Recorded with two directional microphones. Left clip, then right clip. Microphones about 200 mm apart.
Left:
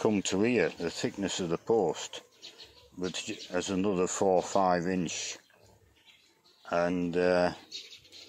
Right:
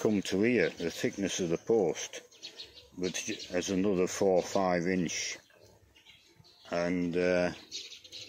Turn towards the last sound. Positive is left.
turn(degrees=15)  # may be behind; listen again after turning